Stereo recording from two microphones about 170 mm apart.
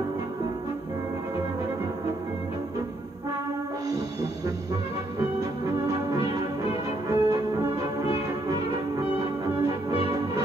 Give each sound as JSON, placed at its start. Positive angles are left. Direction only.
{"t": 7.1, "sound": "music", "side_deg": -20}